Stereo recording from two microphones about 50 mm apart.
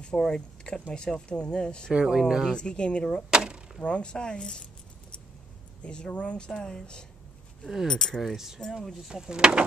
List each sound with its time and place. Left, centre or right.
0.0 s speech: centre
1.9 s speech: centre
2.5 s speech: centre
3.3 s speech: centre
3.8 s speech: left
5.8 s speech: centre
9.1 s speech: centre